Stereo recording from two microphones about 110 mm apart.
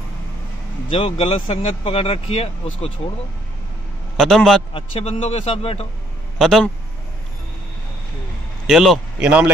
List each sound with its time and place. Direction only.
0.8 s speech: 60° left (ahead or behind)
4.2 s a man's voice: centre (ahead or behind)
4.7 s speech: 60° left (ahead or behind)
6.3 s a man's voice: 5° left (ahead or behind)
8.6 s speech: centre (ahead or behind)
9.2 s a man's voice: 10° right (ahead or behind)